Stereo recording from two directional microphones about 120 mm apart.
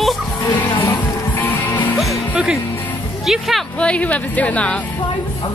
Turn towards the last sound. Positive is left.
turn(degrees=10)  # may be behind; listen again after turning